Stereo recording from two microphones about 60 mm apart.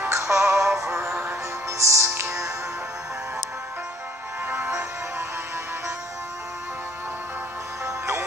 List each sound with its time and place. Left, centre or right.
0.1 s music: right
1.8 s music: right
2.0 s music: right